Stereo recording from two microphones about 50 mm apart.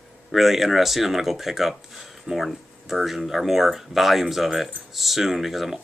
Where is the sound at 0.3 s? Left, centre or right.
Centre.